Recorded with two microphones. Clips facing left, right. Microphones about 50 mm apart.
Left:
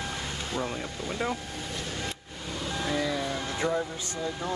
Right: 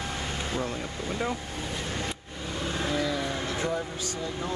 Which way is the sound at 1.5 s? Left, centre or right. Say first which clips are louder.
Right 2 dB; right.